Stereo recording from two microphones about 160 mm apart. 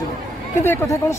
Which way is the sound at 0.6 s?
15° left (ahead or behind).